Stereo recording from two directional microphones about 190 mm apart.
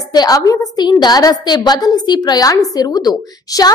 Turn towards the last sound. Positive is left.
turn(degrees=20)  # may be behind; listen again after turning